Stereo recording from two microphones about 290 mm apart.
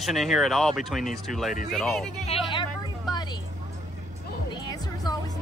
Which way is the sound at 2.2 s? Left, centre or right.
Centre.